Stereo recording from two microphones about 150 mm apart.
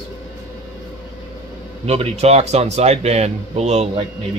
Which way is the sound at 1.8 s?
45° right (ahead or behind).